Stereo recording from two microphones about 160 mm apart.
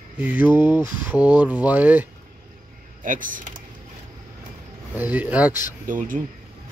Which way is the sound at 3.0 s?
55° right (ahead or behind).